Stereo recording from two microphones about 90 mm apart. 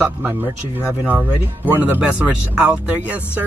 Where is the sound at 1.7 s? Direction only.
20° right (ahead or behind).